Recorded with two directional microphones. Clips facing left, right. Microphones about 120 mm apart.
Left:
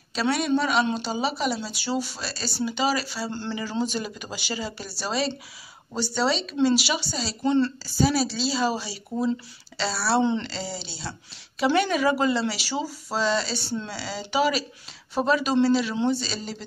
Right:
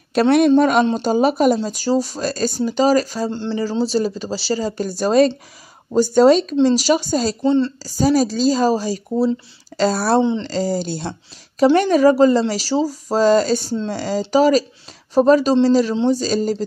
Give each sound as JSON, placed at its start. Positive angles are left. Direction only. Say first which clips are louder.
{"t": 0.1, "sound": "speech", "louder": "right 11 dB", "side_deg": -55}
{"t": 7.4, "sound": "a woman's voice", "louder": "right 3 dB", "side_deg": -20}
{"t": 7.8, "sound": "speech", "louder": "right 7 dB", "side_deg": -40}